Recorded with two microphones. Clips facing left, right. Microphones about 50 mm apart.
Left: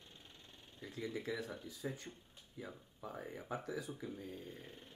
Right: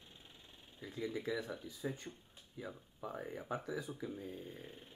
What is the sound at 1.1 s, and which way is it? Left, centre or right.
Speech, centre.